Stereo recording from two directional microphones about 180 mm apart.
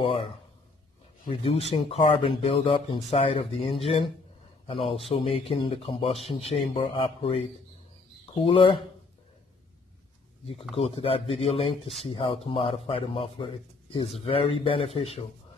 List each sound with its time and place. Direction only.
0.0 s a sound: 30° left (ahead or behind)
1.3 s speech: 30° left (ahead or behind)
8.5 s speech: 30° left (ahead or behind)
10.8 s speech: 30° left (ahead or behind)